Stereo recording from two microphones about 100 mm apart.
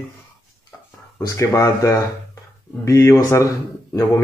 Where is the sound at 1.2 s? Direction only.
35° left (ahead or behind).